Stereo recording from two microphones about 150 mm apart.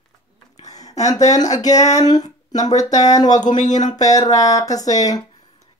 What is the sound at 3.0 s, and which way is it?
Speech, 25° left (ahead or behind).